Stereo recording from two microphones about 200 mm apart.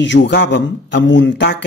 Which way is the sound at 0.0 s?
65° left (ahead or behind).